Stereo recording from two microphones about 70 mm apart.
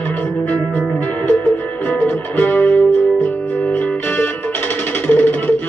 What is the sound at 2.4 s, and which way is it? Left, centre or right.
Music, left.